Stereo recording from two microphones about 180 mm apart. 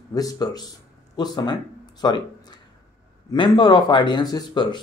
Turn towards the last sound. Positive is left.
turn(degrees=25)  # may be behind; listen again after turning